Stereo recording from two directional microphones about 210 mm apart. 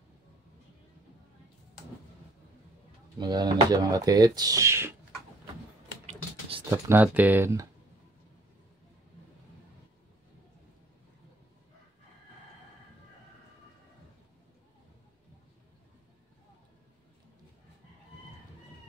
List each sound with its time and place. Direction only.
3.2 s speech: 20° right (ahead or behind)
6.7 s speech: 10° right (ahead or behind)